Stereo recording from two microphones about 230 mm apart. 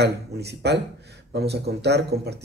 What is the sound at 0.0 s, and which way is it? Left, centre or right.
Speech, right.